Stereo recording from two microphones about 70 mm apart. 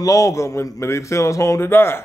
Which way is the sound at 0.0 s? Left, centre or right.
Left.